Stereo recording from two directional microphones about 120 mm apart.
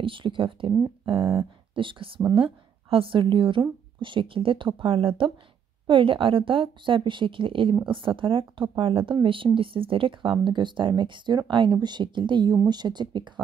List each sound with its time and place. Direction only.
0.0 s a woman's voice: 45° right (ahead or behind)
1.2 s speech: 20° right (ahead or behind)
1.8 s a woman's voice: 45° right (ahead or behind)